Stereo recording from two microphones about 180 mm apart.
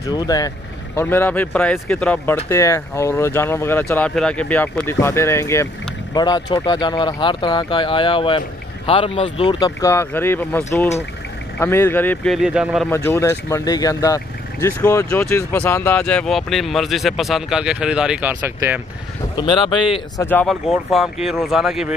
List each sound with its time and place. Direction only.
0.1 s speech: 20° left (ahead or behind)
9.6 s speech: 15° left (ahead or behind); by 12.8 s 5° right (ahead or behind)
12.9 s speech: 15° left (ahead or behind); by 18.8 s 10° right (ahead or behind)
19.3 s speech: 25° left (ahead or behind)
20.2 s speech: 10° left (ahead or behind)
20.6 s speech: centre (ahead or behind)